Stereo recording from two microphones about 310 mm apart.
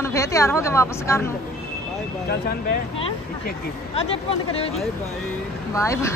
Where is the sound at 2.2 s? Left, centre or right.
Left.